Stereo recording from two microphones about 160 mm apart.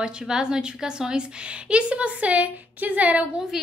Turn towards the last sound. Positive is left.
turn(degrees=-5)  # may be behind; listen again after turning